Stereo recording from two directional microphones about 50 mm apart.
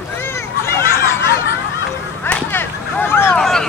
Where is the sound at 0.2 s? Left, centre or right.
Left.